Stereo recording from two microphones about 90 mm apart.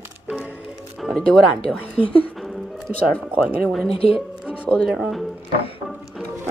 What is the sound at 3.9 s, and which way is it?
Speech, 90° left.